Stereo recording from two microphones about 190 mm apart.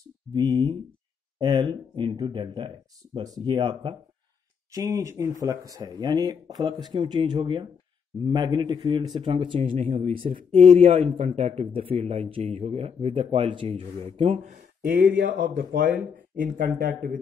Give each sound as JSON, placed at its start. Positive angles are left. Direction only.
{"t": 0.3, "sound": "speech", "side_deg": -25}
{"t": 4.7, "sound": "a man's voice", "side_deg": -15}